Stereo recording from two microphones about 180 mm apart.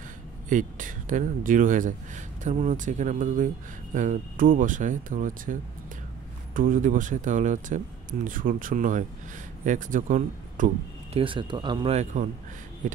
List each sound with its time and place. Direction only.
0.5 s speech: 45° right (ahead or behind)
11.1 s speech: 30° right (ahead or behind)
11.9 s speech: 40° right (ahead or behind)